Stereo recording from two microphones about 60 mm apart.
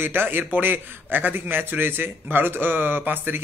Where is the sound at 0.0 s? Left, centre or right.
Right.